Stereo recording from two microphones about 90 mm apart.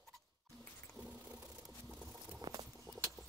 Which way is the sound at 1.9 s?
10° right (ahead or behind).